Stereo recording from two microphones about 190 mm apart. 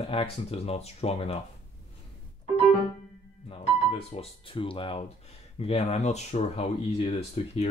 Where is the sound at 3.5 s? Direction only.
30° left (ahead or behind).